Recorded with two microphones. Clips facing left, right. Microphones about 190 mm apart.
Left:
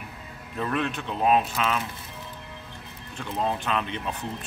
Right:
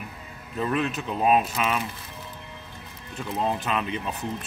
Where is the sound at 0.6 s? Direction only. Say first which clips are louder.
Right 2 dB; 5° right (ahead or behind).